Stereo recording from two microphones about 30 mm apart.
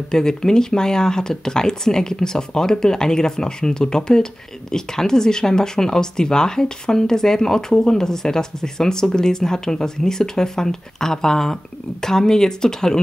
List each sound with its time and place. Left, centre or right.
0.1 s speech: left